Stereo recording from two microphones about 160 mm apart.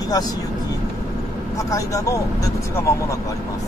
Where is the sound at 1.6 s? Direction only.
20° left (ahead or behind).